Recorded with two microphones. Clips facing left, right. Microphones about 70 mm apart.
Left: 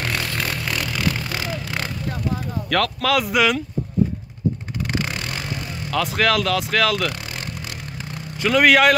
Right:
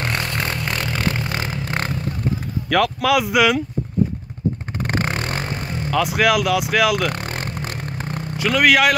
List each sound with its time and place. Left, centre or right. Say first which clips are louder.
0.0 s vehicle: right 2 dB; right
2.7 s speech: right 3 dB; centre
4.8 s vehicle: right 3 dB; right
5.9 s speech: right 2 dB; centre
7.1 s vehicle: right 4 dB; right
8.4 s speech: left 1 dB; centre